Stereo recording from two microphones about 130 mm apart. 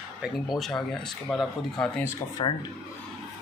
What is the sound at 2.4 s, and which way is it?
Speech, 40° left (ahead or behind).